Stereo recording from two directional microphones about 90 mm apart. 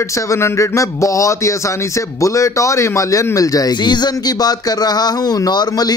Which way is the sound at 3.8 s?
55° left (ahead or behind).